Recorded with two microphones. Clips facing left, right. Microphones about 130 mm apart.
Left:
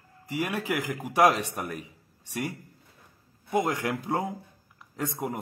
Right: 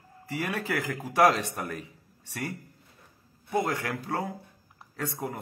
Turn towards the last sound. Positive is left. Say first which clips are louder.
# left 2 dB
turn(degrees=20)  # may be behind; listen again after turning